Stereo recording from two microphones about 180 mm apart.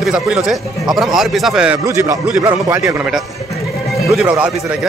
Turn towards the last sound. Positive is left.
turn(degrees=-5)  # may be behind; listen again after turning